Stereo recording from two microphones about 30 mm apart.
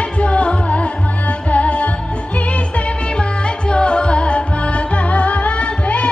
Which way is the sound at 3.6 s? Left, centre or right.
Left.